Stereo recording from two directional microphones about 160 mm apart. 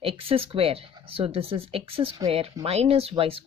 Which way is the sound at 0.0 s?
35° right (ahead or behind).